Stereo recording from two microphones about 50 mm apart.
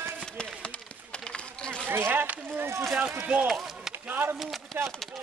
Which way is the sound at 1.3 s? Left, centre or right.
Centre.